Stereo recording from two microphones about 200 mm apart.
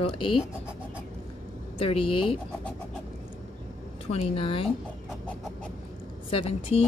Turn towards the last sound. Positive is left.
turn(degrees=25)  # may be behind; listen again after turning